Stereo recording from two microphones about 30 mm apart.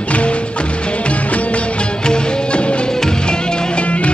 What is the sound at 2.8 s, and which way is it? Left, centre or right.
Music, left.